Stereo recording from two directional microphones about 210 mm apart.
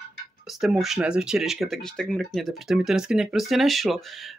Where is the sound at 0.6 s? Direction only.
Centre (ahead or behind).